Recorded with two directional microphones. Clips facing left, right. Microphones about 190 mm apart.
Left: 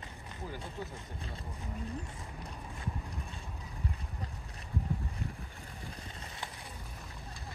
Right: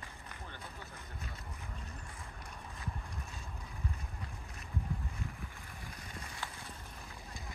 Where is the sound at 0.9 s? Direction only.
30° left (ahead or behind).